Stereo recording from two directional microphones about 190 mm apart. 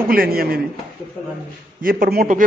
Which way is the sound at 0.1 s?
50° right (ahead or behind).